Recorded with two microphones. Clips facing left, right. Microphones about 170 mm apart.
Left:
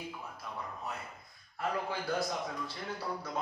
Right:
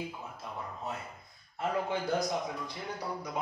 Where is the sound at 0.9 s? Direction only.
25° right (ahead or behind).